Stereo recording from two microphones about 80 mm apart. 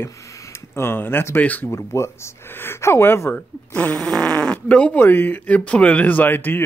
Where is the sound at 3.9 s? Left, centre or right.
Centre.